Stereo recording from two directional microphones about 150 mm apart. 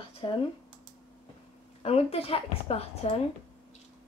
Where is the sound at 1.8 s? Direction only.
40° left (ahead or behind).